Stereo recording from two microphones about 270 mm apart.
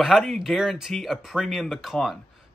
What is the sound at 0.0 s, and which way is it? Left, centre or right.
Speech, centre.